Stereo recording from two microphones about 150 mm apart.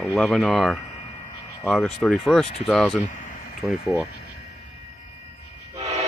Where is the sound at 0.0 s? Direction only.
Centre (ahead or behind).